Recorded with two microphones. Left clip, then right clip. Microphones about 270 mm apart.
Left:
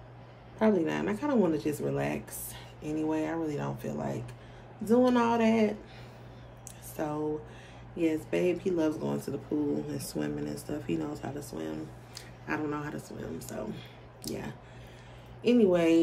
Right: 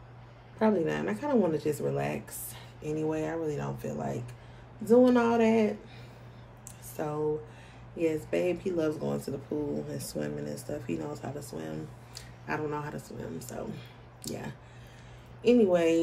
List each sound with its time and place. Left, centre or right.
0.6 s speech: centre
8.0 s speech: centre